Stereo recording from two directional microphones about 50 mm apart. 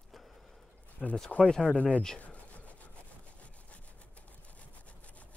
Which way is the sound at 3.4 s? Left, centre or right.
Left.